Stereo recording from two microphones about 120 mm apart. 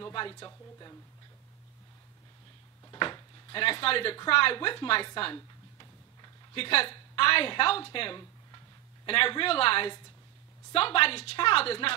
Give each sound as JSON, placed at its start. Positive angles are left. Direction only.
{"t": 0.0, "sound": "speech", "side_deg": 45}
{"t": 0.5, "sound": "speech", "side_deg": 30}
{"t": 2.9, "sound": "a woman's voice", "side_deg": 40}